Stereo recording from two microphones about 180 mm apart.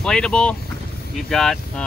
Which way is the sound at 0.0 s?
5° left (ahead or behind).